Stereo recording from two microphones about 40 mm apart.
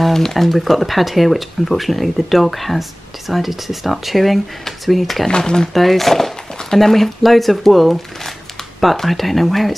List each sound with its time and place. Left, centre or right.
0.0 s speech: centre
5.3 s speech: centre
5.7 s speech: centre